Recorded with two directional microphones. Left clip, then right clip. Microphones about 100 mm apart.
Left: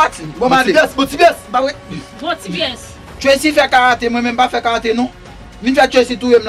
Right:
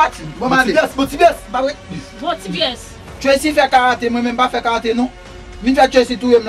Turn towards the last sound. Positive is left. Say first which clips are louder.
# left 1 dB
turn(degrees=20)  # may be behind; listen again after turning